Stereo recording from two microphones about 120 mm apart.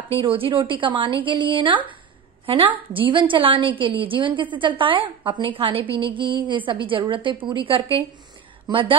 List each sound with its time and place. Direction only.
0.1 s a woman's voice: 50° right (ahead or behind)